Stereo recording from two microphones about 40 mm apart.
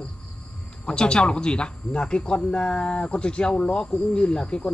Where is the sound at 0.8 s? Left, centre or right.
Left.